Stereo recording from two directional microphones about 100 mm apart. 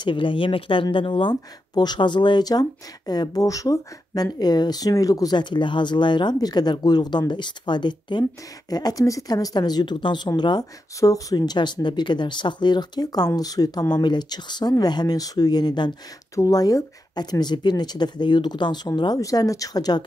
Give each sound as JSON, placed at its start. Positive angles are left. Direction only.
{"t": 0.0, "sound": "speech", "side_deg": 55}
{"t": 1.3, "sound": "speech", "side_deg": 45}
{"t": 11.0, "sound": "speech", "side_deg": 35}